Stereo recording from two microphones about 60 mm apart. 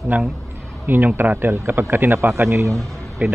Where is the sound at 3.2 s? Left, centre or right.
Right.